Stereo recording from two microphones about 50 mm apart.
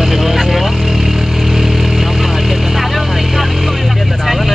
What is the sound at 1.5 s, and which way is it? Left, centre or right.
Vehicle, centre.